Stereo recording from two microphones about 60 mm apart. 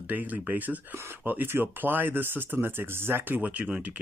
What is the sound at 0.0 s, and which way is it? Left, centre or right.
Speech, right.